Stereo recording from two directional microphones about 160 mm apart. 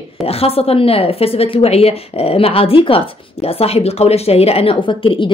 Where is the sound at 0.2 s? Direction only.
40° left (ahead or behind).